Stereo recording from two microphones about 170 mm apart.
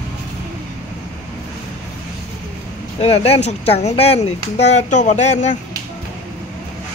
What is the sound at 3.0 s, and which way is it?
Speech, 40° left (ahead or behind).